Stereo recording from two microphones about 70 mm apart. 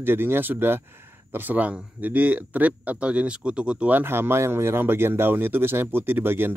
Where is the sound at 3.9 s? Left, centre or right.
Right.